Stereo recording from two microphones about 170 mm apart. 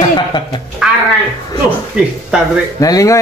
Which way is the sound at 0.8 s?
Centre (ahead or behind).